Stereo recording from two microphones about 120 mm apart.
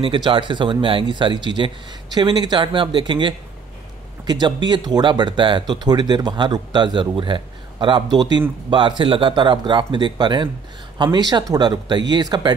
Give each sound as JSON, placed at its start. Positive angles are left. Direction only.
{"t": 0.0, "sound": "speech", "side_deg": -45}